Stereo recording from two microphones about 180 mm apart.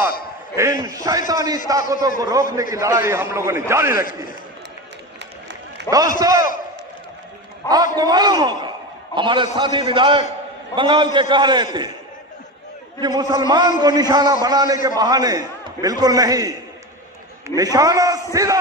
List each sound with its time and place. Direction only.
0.6 s a man's voice: 20° right (ahead or behind)
5.9 s a man's voice: 20° right (ahead or behind)
7.6 s a man's voice: 20° right (ahead or behind)
13.0 s a man's voice: 20° right (ahead or behind)
17.6 s a man's voice: 20° right (ahead or behind)